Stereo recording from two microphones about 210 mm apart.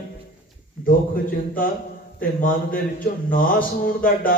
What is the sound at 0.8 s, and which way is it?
A man's voice, 40° left (ahead or behind).